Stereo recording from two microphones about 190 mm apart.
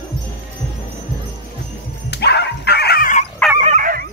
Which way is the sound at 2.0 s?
60° left (ahead or behind).